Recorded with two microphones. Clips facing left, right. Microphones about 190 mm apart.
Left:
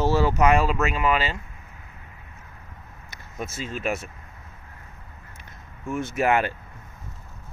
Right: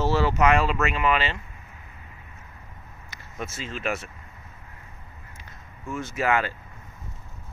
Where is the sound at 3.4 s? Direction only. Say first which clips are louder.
Left 3 dB; 45° left (ahead or behind).